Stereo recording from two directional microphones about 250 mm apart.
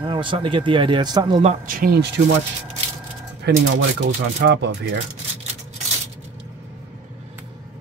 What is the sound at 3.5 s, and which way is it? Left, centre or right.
Speech, right.